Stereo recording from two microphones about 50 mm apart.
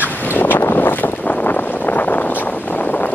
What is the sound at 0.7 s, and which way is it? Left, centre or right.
Wind, left.